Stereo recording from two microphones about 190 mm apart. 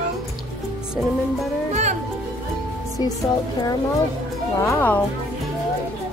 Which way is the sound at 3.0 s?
20° left (ahead or behind).